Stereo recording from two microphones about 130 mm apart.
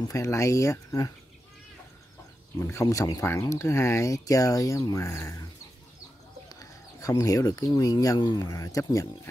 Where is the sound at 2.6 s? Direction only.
20° left (ahead or behind).